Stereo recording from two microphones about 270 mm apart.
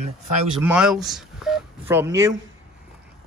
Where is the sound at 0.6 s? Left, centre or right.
Centre.